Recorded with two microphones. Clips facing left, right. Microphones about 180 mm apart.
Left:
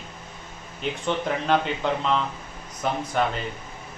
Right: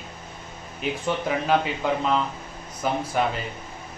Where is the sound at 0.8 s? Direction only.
5° right (ahead or behind).